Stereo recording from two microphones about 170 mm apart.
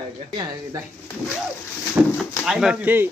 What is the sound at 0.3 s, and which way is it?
Speech, 25° right (ahead or behind).